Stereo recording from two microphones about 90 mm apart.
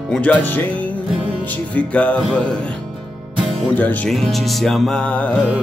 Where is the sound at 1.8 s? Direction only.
15° left (ahead or behind).